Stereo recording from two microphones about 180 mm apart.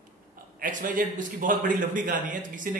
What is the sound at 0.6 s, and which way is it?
A man's voice, 50° right (ahead or behind).